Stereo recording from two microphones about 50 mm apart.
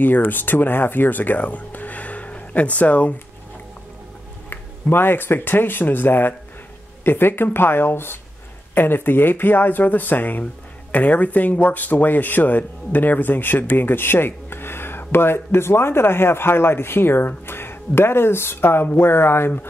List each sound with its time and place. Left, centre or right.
0.0 s speech: left
4.5 s speech: left